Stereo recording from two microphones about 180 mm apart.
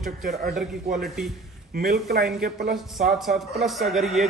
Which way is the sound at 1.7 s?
60° right (ahead or behind).